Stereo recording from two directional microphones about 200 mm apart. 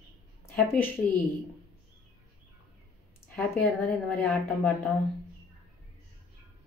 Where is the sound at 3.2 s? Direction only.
5° left (ahead or behind).